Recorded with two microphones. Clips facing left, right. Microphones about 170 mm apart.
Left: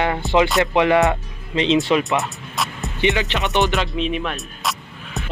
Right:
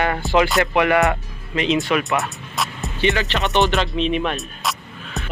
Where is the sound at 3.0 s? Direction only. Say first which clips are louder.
Even; 20° left (ahead or behind).